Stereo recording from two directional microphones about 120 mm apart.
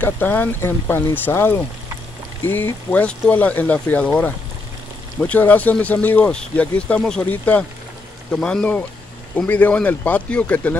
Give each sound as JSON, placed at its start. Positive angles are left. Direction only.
{"t": 0.0, "sound": "speech", "side_deg": 15}